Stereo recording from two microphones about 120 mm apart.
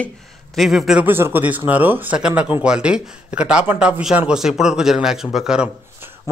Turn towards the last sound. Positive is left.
turn(degrees=-5)  # may be behind; listen again after turning